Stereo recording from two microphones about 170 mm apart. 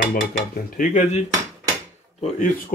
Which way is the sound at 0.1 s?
55° left (ahead or behind).